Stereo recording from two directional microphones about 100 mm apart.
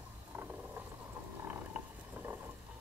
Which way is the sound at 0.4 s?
25° right (ahead or behind).